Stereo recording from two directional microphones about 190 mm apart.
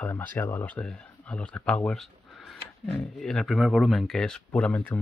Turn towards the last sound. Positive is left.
turn(degrees=10)  # may be behind; listen again after turning